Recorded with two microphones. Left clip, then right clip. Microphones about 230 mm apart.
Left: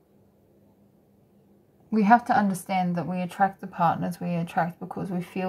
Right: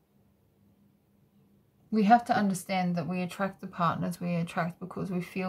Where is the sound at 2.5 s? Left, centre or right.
Right.